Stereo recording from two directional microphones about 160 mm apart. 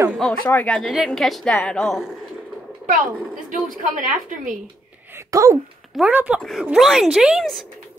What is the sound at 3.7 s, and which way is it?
Speech, 55° right (ahead or behind).